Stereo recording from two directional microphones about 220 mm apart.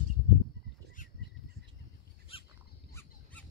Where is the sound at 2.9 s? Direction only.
5° left (ahead or behind).